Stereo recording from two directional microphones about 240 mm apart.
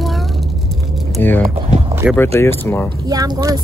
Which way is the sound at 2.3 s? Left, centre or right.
Centre.